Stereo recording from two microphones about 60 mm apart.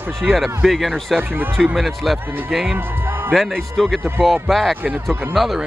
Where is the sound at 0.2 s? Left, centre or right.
Centre.